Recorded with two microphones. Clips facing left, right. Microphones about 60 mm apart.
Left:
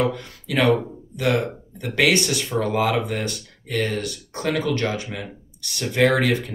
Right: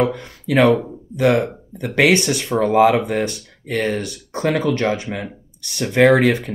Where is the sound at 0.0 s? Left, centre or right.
Right.